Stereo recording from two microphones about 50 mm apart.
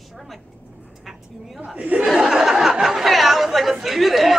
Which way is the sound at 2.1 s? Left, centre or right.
Centre.